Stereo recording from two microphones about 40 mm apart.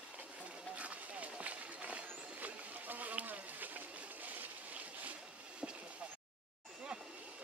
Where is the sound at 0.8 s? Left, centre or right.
Right.